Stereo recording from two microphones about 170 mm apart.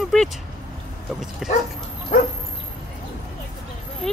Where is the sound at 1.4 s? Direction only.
5° right (ahead or behind).